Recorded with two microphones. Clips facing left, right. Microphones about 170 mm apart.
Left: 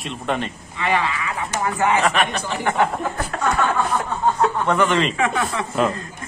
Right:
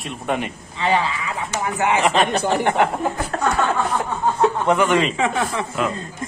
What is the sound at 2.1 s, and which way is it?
Speech, 30° right (ahead or behind).